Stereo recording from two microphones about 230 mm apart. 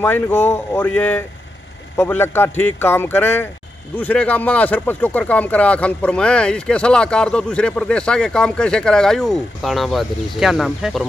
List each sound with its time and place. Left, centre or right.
0.0 s a man's voice: centre